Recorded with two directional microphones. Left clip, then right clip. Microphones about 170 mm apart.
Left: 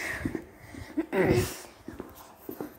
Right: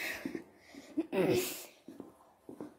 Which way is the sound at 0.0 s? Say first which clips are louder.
Left 6 dB; 15° right (ahead or behind).